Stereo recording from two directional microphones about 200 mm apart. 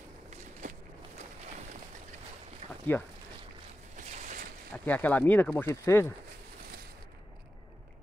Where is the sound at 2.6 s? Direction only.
35° right (ahead or behind).